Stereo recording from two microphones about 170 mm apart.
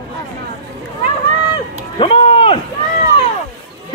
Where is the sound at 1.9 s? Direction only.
30° left (ahead or behind).